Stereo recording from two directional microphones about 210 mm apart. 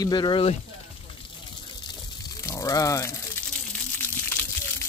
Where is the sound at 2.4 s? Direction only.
15° left (ahead or behind).